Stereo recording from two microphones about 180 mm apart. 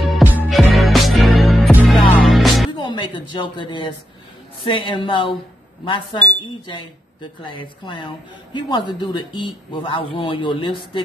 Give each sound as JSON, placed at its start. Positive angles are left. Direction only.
{"t": 0.0, "sound": "music", "side_deg": -5}
{"t": 2.7, "sound": "speech", "side_deg": 25}
{"t": 7.4, "sound": "speech", "side_deg": 25}